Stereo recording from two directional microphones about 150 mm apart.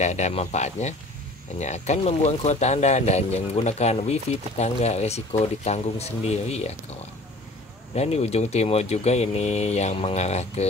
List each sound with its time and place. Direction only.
0.0 s speech: 50° left (ahead or behind)
7.9 s speech: 45° left (ahead or behind)